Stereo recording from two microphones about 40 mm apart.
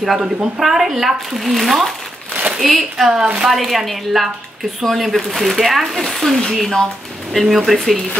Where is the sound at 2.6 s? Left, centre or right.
Centre.